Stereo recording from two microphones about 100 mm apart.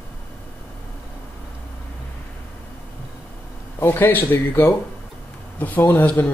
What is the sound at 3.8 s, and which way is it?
Speech, 20° left (ahead or behind).